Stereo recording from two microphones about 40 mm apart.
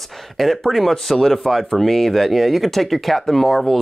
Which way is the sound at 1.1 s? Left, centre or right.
Centre.